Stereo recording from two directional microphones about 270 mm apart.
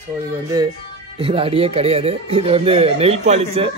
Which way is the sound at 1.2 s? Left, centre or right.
Right.